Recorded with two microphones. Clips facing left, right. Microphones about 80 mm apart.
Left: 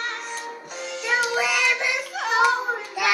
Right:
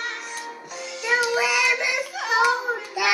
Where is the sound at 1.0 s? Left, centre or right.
Centre.